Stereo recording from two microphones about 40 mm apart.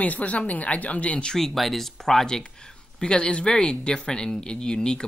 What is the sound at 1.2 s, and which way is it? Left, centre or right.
Speech, centre.